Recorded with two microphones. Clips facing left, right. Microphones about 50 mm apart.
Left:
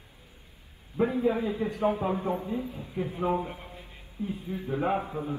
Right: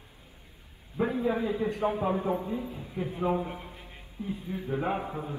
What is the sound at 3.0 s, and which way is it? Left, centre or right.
Speech, left.